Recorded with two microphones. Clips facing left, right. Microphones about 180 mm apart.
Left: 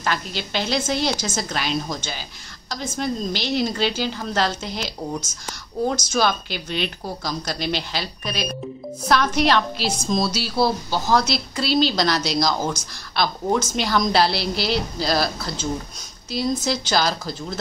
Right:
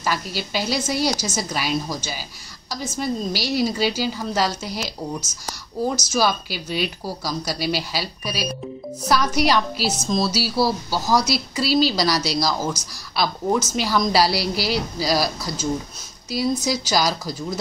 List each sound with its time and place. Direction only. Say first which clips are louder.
0.0 s a woman's voice: right 1 dB; 5° right (ahead or behind)
6.0 s a woman's voice: even; 5° right (ahead or behind)